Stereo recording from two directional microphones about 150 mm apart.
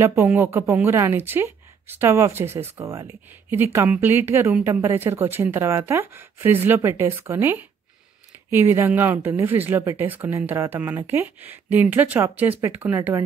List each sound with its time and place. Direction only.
0.0 s speech: 15° right (ahead or behind)